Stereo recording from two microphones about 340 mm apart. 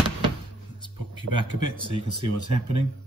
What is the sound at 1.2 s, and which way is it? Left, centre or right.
Speech, right.